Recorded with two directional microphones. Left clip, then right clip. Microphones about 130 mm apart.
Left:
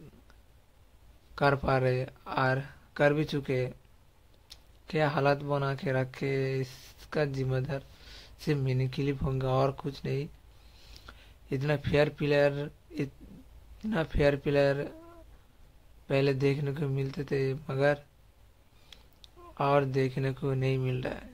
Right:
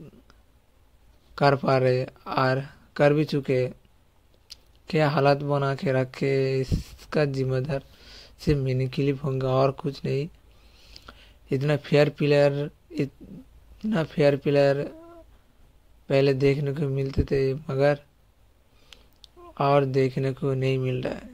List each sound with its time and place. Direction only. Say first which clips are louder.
1.3 s speech: right 6 dB; 40° right (ahead or behind)
16.1 s speech: right 6 dB; 35° right (ahead or behind)